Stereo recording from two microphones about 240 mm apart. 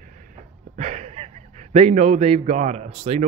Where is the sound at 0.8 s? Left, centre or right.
Right.